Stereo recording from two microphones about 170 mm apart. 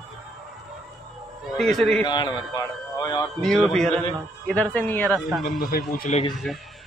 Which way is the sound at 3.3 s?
5° left (ahead or behind).